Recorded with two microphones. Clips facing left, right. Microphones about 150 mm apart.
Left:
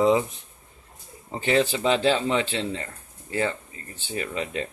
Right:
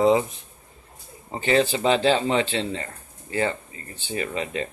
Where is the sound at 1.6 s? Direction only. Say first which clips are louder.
Right 2 dB; 40° right (ahead or behind).